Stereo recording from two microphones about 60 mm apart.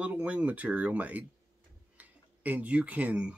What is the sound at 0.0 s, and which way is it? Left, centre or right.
Speech, right.